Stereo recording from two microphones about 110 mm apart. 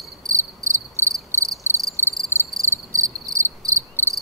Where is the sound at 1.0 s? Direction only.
20° left (ahead or behind).